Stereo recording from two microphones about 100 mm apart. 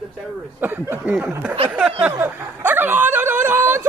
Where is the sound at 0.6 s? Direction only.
20° right (ahead or behind).